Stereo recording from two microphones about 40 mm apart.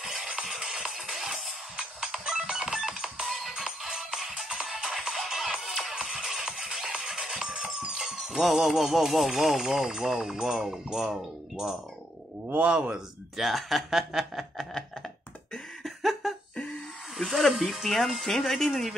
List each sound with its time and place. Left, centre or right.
0.9 s music: centre
7.8 s speech: centre
12.7 s speech: right
13.4 s speech: centre
15.8 s a sound: centre
17.2 s speech: centre